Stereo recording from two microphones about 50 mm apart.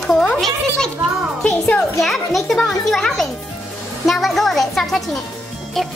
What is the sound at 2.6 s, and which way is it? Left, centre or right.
A child's voice, centre.